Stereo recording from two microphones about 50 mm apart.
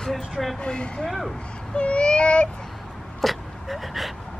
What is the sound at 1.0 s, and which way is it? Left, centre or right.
Vehicle, centre.